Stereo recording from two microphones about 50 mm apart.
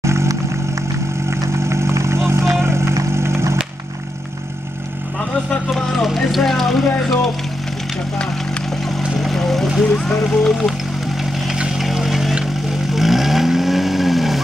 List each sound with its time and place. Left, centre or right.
0.0 s music: right
1.3 s vehicle: right
5.7 s vehicle: centre
6.0 s vehicle: centre
9.2 s vehicle: centre
10.0 s speech: centre
11.5 s vehicle: centre
11.8 s vehicle: centre